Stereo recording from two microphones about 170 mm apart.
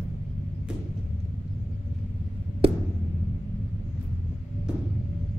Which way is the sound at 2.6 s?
30° right (ahead or behind).